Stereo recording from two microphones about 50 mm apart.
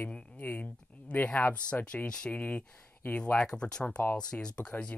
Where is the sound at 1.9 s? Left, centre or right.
Centre.